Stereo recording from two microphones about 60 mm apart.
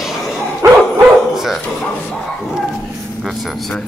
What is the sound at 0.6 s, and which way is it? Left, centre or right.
Dog, right.